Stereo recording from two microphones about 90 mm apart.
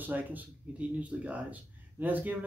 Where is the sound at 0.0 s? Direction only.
20° right (ahead or behind).